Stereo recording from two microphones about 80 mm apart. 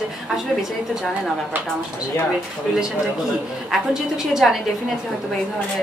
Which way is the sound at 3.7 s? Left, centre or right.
Centre.